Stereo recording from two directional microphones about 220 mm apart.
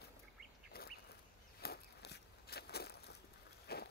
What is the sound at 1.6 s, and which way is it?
Walk, 45° left (ahead or behind).